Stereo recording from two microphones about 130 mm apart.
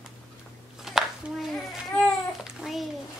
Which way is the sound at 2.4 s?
Centre (ahead or behind).